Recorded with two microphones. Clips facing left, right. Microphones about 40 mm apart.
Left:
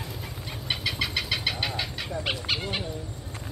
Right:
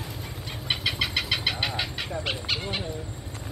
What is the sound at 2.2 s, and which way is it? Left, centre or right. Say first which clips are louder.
Speech: left 2 dB; centre.